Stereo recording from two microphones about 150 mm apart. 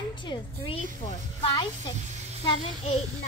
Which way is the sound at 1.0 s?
35° left (ahead or behind).